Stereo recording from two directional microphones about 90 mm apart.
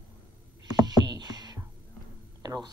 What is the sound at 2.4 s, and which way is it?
Speech, 45° right (ahead or behind).